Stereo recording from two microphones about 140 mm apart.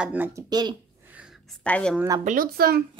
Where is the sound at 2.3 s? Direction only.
90° right.